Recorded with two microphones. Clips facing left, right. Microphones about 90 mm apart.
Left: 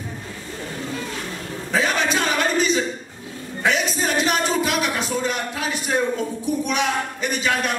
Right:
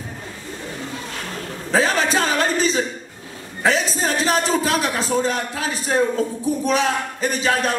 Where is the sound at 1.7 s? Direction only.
35° right (ahead or behind).